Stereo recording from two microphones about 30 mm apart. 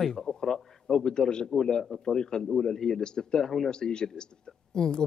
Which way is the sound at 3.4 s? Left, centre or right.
Centre.